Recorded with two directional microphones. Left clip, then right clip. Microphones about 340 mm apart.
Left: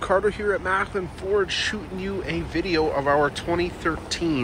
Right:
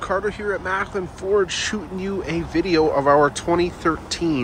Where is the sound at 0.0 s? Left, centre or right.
Centre.